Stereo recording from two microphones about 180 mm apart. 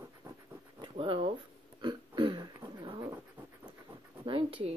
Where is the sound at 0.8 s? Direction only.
30° right (ahead or behind).